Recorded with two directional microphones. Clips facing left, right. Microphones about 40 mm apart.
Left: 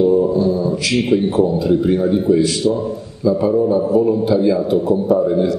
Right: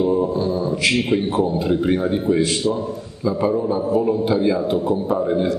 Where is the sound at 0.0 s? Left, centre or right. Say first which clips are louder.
Left 5 dB; right.